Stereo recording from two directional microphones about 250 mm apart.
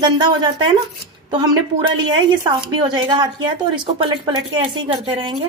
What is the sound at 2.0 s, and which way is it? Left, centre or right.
A woman's voice, centre.